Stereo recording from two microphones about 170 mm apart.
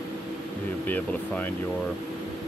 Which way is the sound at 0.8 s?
10° left (ahead or behind).